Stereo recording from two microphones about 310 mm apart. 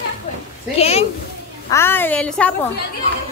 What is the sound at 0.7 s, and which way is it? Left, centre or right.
Speech, centre.